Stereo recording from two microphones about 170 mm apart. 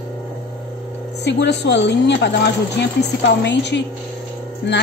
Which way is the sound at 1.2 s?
90° left.